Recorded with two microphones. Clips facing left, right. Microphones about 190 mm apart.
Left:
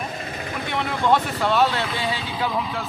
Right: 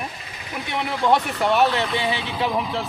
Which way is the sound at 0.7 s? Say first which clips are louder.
Right 1 dB; 10° right (ahead or behind).